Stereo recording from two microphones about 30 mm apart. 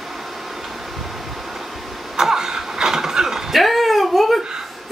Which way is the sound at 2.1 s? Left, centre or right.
Centre.